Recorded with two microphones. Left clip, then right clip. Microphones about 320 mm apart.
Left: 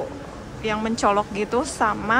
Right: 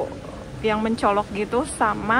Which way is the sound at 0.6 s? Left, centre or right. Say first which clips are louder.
Right 1 dB; centre.